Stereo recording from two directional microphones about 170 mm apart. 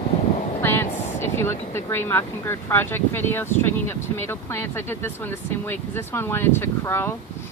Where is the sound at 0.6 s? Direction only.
15° left (ahead or behind).